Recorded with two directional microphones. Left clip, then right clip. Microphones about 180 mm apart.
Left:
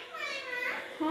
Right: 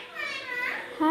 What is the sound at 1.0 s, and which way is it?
Speech, 40° right (ahead or behind).